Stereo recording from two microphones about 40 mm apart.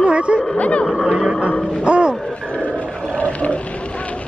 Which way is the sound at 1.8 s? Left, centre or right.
Right.